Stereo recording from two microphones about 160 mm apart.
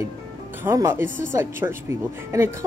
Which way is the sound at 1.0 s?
55° right (ahead or behind).